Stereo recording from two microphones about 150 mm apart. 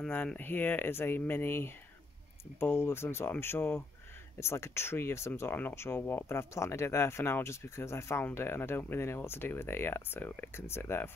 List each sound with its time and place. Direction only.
0.0 s speech: 10° left (ahead or behind)